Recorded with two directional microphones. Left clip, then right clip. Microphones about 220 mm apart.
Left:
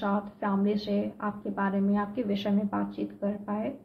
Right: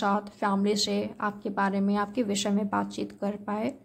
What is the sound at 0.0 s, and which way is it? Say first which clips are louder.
A woman's voice: right 4 dB; 40° right (ahead or behind).